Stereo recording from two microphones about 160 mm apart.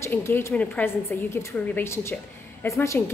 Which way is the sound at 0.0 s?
15° left (ahead or behind).